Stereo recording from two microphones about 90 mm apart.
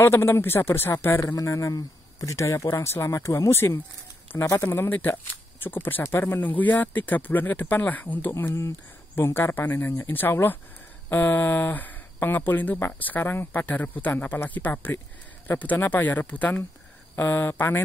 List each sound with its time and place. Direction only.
0.0 s speech: 25° left (ahead or behind)
8.3 s speech: 30° left (ahead or behind)